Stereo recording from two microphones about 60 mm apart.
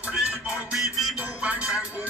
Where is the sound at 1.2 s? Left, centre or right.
Centre.